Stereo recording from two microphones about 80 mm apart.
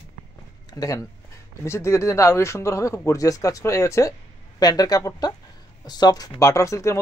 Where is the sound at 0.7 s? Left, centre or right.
Left.